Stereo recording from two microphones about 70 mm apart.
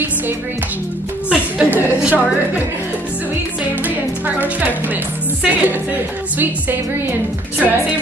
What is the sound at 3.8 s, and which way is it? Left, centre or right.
A woman's voice, right.